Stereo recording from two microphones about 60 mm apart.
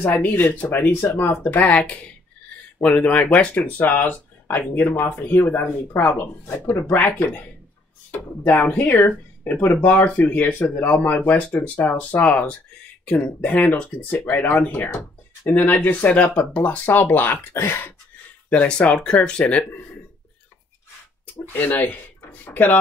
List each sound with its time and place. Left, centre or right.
0.0 s speech: left
1.6 s speech: centre
13.4 s speech: left
18.5 s speech: centre
21.5 s speech: left